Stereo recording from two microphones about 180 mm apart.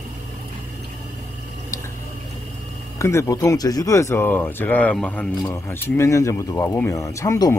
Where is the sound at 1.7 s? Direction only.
20° left (ahead or behind).